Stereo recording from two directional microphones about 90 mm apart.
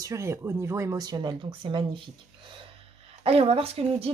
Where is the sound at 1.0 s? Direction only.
55° right (ahead or behind).